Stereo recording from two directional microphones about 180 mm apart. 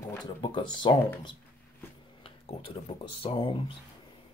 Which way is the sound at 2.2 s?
30° left (ahead or behind).